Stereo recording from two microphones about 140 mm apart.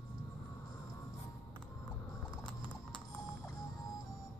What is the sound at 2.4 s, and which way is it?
Clip-clop, 35° left (ahead or behind).